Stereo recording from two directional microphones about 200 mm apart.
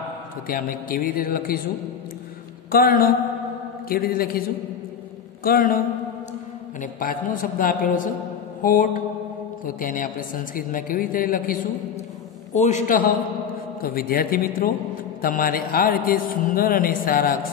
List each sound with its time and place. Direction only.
0.5 s speech: 45° left (ahead or behind)
2.7 s a man's voice: 45° left (ahead or behind)